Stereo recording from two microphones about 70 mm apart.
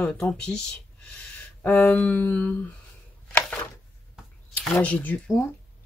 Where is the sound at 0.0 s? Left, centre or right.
Centre.